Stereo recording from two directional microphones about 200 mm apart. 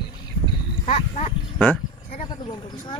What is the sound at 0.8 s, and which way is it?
Livestock, 30° left (ahead or behind).